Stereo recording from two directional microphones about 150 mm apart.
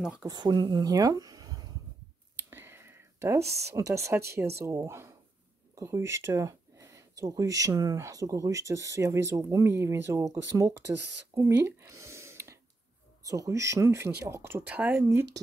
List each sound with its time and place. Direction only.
0.0 s speech: 5° right (ahead or behind)
0.3 s speech: 30° right (ahead or behind)
2.5 s a sound: 15° right (ahead or behind)
3.7 s speech: 20° right (ahead or behind)